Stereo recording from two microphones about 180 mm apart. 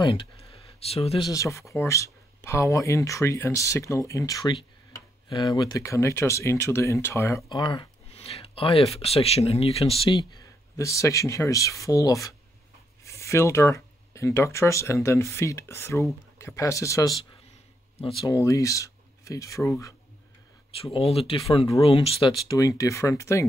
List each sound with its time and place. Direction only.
0.0 s speech: 25° left (ahead or behind)
1.3 s speech: 15° left (ahead or behind)
18.2 s speech: 20° left (ahead or behind)
20.8 s speech: 35° left (ahead or behind); by 23.4 s 15° left (ahead or behind)